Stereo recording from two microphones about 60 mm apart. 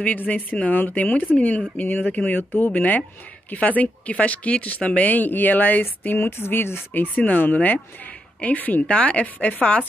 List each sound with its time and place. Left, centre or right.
0.0 s speech: left
6.1 s speech: left; by 9.8 s centre